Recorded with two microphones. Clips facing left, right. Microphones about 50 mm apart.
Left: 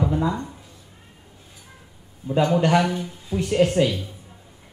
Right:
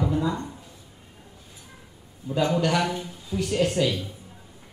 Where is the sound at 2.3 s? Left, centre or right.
Left.